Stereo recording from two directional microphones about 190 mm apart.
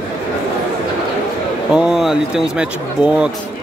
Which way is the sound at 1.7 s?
5° right (ahead or behind).